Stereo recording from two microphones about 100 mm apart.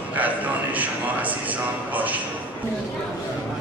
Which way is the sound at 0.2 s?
15° right (ahead or behind).